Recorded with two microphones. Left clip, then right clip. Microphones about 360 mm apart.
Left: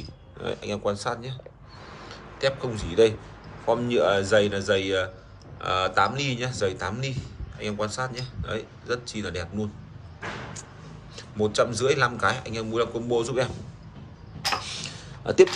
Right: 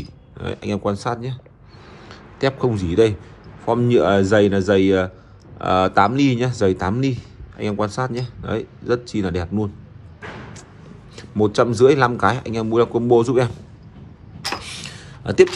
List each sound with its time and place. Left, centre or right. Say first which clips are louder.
0.0 s a man's voice: right 2 dB; centre
11.4 s a man's voice: right 8 dB; centre
14.6 s a sound: right 2 dB; centre